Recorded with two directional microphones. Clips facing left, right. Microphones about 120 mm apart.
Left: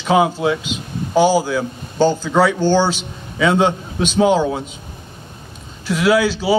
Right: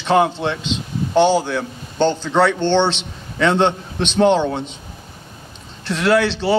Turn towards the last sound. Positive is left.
turn(degrees=5)  # may be behind; listen again after turning